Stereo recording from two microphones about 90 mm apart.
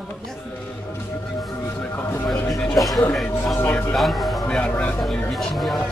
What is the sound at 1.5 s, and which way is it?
Speech, 30° left (ahead or behind).